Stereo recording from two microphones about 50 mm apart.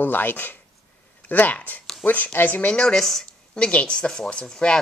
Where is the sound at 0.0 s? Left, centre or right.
Left.